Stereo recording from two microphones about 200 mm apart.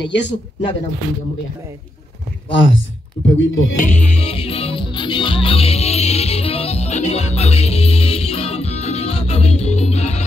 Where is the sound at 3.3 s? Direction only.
75° left (ahead or behind).